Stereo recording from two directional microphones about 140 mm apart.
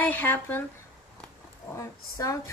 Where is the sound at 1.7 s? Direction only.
25° left (ahead or behind).